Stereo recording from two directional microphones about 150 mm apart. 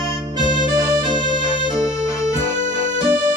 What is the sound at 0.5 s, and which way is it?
Music, 30° right (ahead or behind).